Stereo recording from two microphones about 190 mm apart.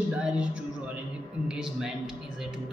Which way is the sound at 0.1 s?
5° right (ahead or behind).